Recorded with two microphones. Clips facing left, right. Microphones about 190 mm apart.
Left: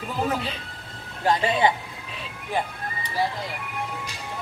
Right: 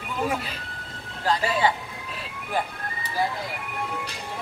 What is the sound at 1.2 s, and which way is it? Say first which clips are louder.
Speech: left 2 dB; 20° left (ahead or behind).